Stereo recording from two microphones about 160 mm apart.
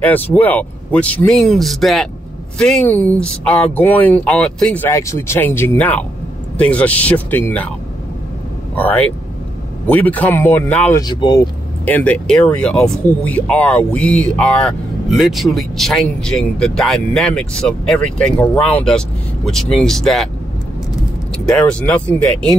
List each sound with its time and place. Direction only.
0.0 s speech: 10° left (ahead or behind)
4.8 s speech: 20° left (ahead or behind)
8.7 s speech: 10° left (ahead or behind)
11.0 s speech: 25° left (ahead or behind)
11.8 s speech: 10° left (ahead or behind)
21.5 s speech: 5° left (ahead or behind)